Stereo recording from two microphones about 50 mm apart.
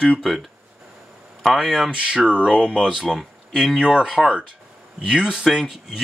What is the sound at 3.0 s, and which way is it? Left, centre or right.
Speech, centre.